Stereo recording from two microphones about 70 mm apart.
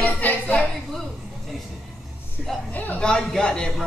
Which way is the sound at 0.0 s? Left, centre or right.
Left.